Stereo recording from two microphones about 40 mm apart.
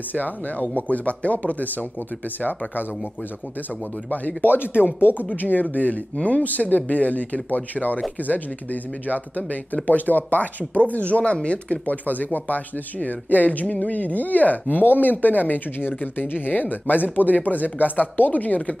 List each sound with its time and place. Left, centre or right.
0.1 s speech: left
4.4 s speech: left
5.0 s speech: left